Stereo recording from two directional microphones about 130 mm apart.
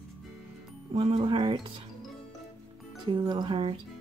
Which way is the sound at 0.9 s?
40° right (ahead or behind).